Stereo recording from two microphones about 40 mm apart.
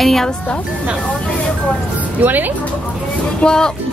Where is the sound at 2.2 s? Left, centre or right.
Right.